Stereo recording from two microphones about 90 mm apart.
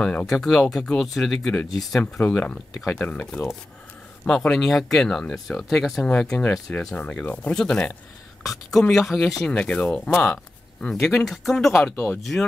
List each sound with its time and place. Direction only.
0.0 s speech: 15° left (ahead or behind)
7.5 s speech: 5° left (ahead or behind)
11.9 s speech: 20° left (ahead or behind)